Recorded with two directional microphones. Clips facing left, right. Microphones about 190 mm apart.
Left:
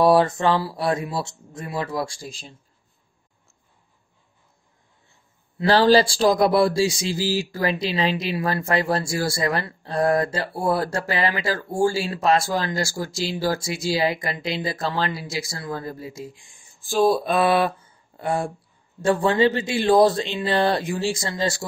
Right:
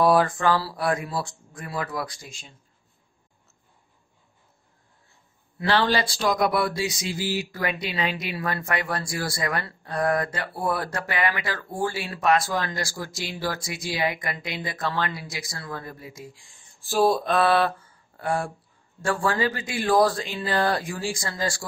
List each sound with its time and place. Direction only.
0.0 s speech: 25° left (ahead or behind)
5.7 s speech: 35° left (ahead or behind)
16.8 s a sound: 5° right (ahead or behind)
17.2 s mantra: 15° left (ahead or behind)
18.9 s speech: 20° left (ahead or behind)